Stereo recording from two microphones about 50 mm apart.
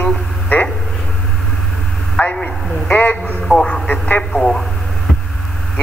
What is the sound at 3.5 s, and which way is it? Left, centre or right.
Speech, left.